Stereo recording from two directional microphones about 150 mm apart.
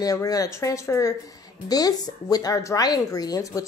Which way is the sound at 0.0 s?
25° left (ahead or behind).